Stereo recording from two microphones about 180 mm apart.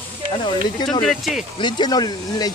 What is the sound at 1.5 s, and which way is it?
Speech, 25° left (ahead or behind).